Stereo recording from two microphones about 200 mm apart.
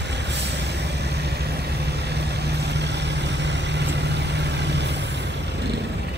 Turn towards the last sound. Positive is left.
turn(degrees=-60)  # may be behind; listen again after turning